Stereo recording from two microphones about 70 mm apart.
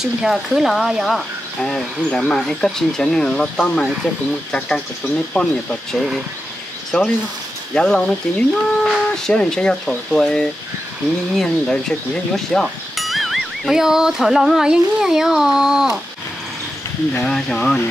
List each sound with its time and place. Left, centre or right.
0.0 s speech: centre
6.9 s speech: centre
17.3 s speech: centre